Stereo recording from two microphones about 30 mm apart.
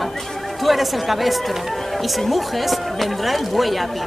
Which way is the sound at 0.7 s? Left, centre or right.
Centre.